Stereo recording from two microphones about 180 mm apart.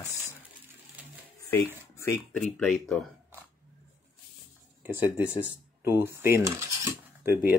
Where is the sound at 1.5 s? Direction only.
15° left (ahead or behind).